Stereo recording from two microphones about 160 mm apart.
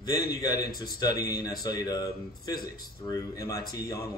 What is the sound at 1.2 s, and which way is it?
Speech, 80° left.